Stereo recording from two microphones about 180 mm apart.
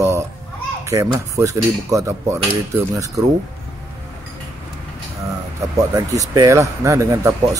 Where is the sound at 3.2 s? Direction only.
20° right (ahead or behind).